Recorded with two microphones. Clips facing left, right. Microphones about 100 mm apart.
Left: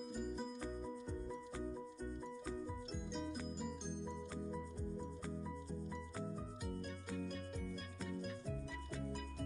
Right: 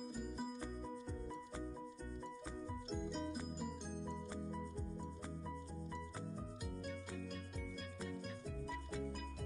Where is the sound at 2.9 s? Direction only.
Centre (ahead or behind).